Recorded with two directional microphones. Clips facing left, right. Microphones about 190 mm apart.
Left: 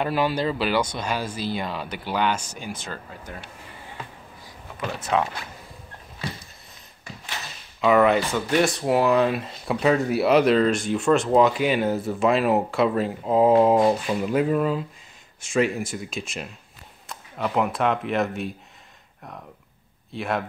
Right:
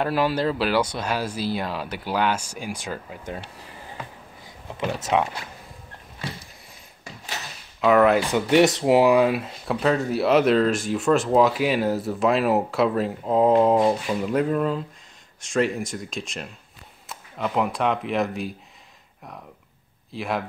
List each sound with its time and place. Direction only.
0.0 s speech: centre (ahead or behind)
4.7 s speech: 20° right (ahead or behind)
7.8 s speech: centre (ahead or behind)
8.3 s speech: 15° right (ahead or behind); by 18.5 s centre (ahead or behind)
20.1 s a man's voice: centre (ahead or behind)